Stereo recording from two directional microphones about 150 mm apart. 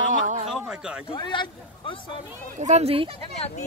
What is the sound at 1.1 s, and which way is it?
Speech, 35° left (ahead or behind).